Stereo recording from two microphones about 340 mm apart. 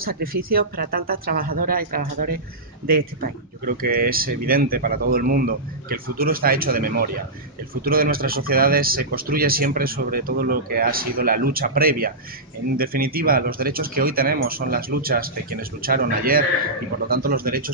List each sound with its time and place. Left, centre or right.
0.0 s speech: right